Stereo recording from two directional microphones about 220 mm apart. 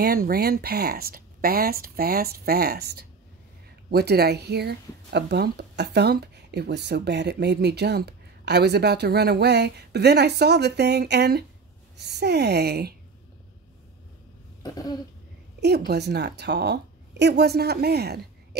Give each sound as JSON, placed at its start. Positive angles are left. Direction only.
{"t": 0.0, "sound": "speech", "side_deg": -45}
{"t": 14.6, "sound": "throat clearing", "side_deg": 20}
{"t": 15.9, "sound": "speech", "side_deg": -50}